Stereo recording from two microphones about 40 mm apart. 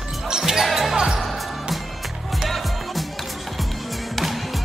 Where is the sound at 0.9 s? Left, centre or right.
Centre.